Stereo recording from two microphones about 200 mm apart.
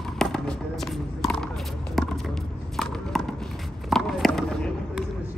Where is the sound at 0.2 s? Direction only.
Centre (ahead or behind).